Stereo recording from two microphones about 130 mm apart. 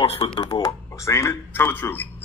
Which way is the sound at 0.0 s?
45° left (ahead or behind).